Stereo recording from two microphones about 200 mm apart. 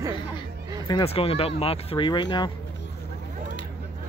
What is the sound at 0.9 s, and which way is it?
Speech, 25° left (ahead or behind).